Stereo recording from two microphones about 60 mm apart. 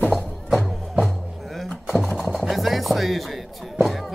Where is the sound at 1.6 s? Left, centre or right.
Centre.